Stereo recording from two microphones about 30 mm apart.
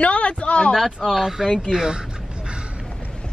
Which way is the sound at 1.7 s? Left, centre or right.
Right.